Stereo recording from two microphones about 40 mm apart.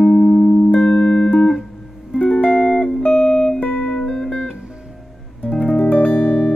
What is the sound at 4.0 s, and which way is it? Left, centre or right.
Music, left.